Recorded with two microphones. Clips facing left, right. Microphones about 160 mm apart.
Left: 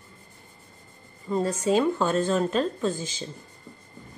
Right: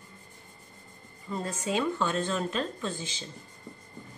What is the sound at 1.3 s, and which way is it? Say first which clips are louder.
Speech: left 8 dB; 40° left (ahead or behind).